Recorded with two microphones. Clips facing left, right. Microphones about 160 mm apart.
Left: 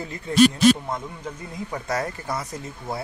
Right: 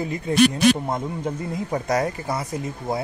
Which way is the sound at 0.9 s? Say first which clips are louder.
Right 5 dB; 25° right (ahead or behind).